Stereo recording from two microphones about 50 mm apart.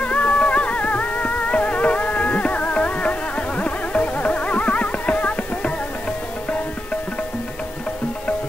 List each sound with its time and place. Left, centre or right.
0.0 s music: left